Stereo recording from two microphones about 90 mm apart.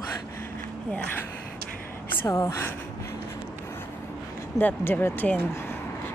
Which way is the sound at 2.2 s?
35° left (ahead or behind).